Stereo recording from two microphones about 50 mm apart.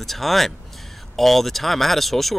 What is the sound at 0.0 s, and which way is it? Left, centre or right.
Speech, centre.